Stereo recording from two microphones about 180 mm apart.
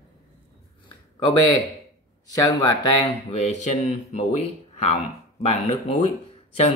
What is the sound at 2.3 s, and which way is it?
Speech, 20° left (ahead or behind).